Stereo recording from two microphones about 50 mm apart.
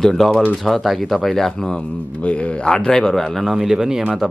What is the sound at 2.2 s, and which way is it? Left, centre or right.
A man's voice, left.